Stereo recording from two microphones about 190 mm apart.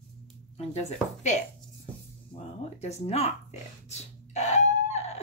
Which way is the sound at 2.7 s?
35° left (ahead or behind).